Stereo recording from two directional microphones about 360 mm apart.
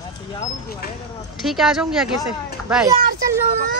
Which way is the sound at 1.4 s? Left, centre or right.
Centre.